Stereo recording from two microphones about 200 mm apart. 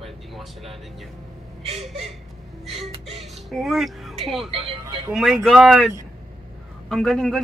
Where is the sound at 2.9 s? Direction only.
30° right (ahead or behind).